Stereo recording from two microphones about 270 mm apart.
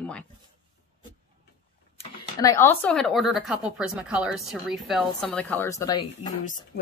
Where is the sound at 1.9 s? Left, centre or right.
Centre.